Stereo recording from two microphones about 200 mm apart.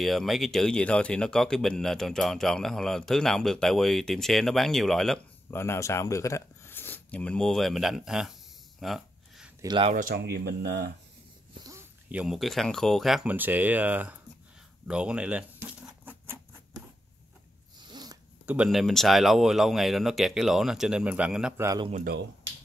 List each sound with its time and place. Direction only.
0.0 s speech: centre (ahead or behind)
5.6 s speech: 15° left (ahead or behind); by 8.3 s centre (ahead or behind)
8.7 s a sound: centre (ahead or behind)
9.6 s speech: 25° right (ahead or behind)
9.9 s speech: 50° right (ahead or behind)
11.6 s speech: 10° right (ahead or behind)
14.9 s a sound: 5° right (ahead or behind)
17.7 s zipper: 20° right (ahead or behind)
18.4 s speech: 5° right (ahead or behind)
21.6 s speech: 20° right (ahead or behind)
21.9 s speech: 45° right (ahead or behind)